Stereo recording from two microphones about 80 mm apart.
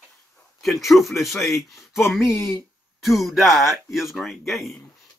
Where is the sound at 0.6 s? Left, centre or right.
Centre.